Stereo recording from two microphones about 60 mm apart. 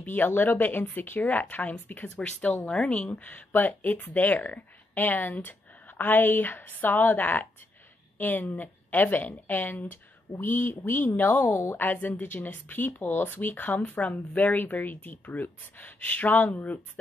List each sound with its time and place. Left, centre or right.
0.0 s speech: left